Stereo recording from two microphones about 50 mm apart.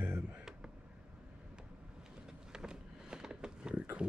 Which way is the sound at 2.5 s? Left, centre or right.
Centre.